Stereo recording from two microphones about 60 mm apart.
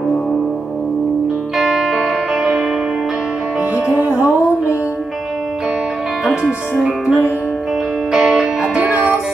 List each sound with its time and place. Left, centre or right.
1.6 s music: centre
3.7 s music: right
6.2 s speech: centre
8.1 s music: centre